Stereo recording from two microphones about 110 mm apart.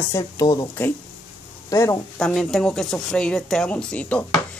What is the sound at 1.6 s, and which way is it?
Speech, 25° left (ahead or behind).